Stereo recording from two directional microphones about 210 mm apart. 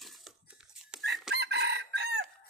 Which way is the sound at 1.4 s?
55° right (ahead or behind).